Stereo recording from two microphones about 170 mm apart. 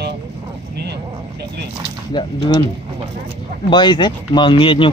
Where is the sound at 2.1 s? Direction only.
25° left (ahead or behind).